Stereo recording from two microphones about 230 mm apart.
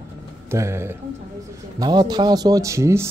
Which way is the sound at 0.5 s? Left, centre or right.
Centre.